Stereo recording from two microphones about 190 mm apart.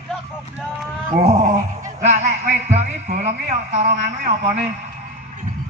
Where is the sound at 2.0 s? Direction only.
35° right (ahead or behind).